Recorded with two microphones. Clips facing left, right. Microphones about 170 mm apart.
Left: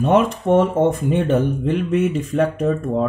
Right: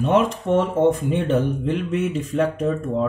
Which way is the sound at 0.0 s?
50° left (ahead or behind).